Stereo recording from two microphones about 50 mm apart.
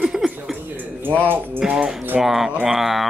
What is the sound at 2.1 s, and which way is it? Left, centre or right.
Speech, centre.